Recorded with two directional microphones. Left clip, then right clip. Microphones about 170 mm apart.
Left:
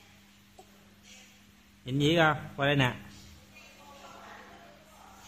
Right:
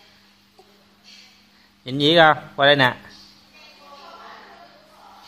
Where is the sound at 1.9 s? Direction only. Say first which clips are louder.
Right 11 dB; 35° right (ahead or behind).